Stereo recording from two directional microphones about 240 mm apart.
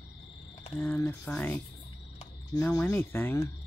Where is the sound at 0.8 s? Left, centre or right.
Centre.